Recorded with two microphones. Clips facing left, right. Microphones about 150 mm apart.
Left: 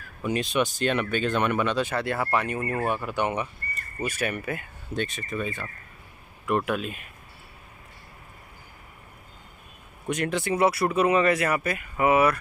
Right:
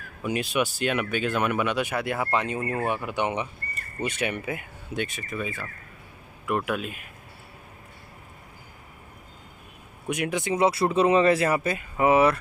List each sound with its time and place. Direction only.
0.2 s speech: 5° right (ahead or behind)
10.0 s speech: 10° right (ahead or behind); by 12.4 s 25° right (ahead or behind)